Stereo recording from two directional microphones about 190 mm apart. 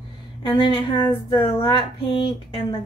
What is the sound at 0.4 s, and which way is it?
Speech, 25° left (ahead or behind).